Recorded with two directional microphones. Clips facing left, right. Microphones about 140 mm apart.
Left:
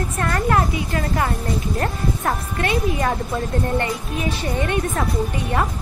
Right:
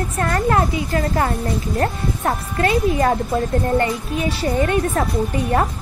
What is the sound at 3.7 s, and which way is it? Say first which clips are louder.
Speech: right 4 dB; 30° right (ahead or behind).